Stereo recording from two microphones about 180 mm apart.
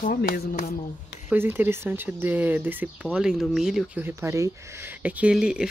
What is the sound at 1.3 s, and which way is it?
Speech, 10° right (ahead or behind).